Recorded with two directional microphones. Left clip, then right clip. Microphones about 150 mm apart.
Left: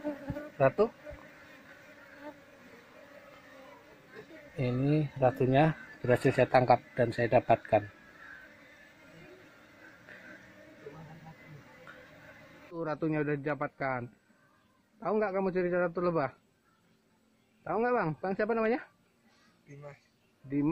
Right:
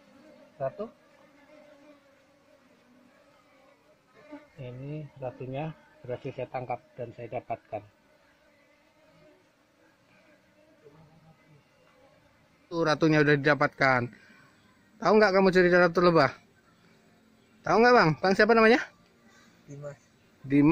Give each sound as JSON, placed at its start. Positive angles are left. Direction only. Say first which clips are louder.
{"t": 0.6, "sound": "speech", "louder": "left 8 dB", "side_deg": 15}
{"t": 4.6, "sound": "speech", "louder": "left 12 dB", "side_deg": 15}
{"t": 12.7, "sound": "a man's voice", "louder": "right 9 dB", "side_deg": -15}
{"t": 17.6, "sound": "a man's voice", "louder": "right 10 dB", "side_deg": -20}
{"t": 20.4, "sound": "a man's voice", "louder": "right 9 dB", "side_deg": -20}